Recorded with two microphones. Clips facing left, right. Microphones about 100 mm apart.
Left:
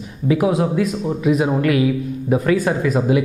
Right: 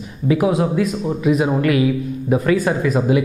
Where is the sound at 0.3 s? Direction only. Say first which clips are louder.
Even; 10° right (ahead or behind).